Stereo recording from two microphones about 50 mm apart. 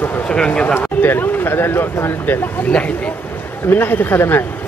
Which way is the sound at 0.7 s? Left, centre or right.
Left.